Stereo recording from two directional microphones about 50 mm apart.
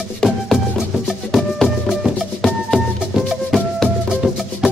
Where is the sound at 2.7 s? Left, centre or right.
Centre.